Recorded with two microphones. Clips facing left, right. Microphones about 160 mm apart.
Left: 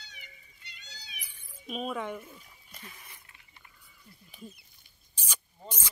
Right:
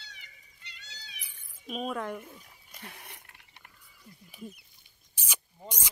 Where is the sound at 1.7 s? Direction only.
Centre (ahead or behind).